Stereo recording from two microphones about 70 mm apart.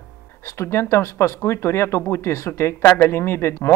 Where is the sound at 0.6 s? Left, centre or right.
Left.